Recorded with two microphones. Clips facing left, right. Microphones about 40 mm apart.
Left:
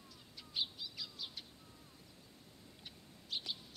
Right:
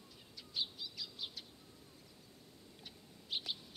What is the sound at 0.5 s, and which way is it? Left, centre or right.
Bird, centre.